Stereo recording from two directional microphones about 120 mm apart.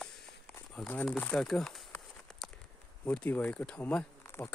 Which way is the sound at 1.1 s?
10° left (ahead or behind).